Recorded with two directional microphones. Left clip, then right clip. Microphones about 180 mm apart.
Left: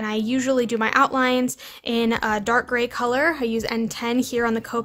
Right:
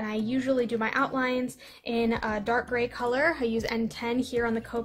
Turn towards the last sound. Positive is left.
turn(degrees=35)  # may be behind; listen again after turning